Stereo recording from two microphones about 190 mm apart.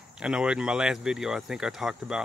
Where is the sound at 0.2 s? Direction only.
5° right (ahead or behind).